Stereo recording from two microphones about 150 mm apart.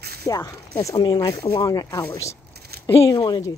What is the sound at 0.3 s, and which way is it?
Speech, 20° left (ahead or behind).